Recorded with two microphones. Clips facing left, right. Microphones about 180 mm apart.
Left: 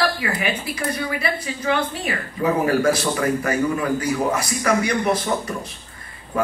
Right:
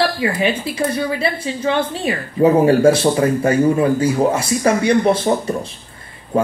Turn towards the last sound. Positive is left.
turn(degrees=-30)  # may be behind; listen again after turning